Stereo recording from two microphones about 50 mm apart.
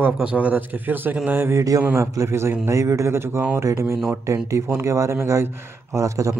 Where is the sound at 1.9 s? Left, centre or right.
Right.